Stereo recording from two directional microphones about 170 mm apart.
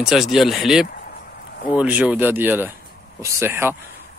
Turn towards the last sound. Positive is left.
turn(degrees=-15)  # may be behind; listen again after turning